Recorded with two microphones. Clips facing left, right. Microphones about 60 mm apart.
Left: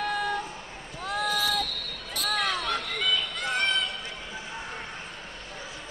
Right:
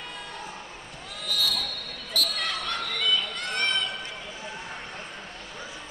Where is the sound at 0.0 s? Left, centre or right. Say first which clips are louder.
Left 11 dB; left.